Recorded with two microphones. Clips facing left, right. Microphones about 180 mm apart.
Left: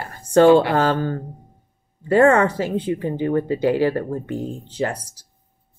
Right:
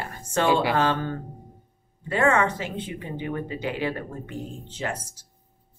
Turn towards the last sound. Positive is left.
turn(degrees=35)  # may be behind; listen again after turning